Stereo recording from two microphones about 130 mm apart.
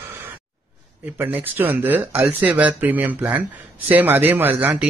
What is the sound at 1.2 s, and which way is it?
A man's voice, 15° right (ahead or behind).